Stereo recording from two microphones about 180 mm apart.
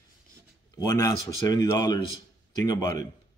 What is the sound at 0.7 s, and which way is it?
Speech, 20° left (ahead or behind).